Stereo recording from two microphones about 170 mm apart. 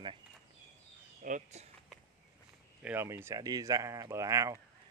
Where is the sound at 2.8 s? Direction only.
15° right (ahead or behind).